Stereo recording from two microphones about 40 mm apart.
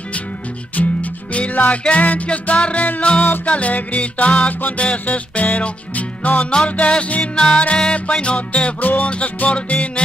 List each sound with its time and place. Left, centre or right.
0.8 s music: left
6.5 s music: left
8.8 s music: left
9.1 s music: left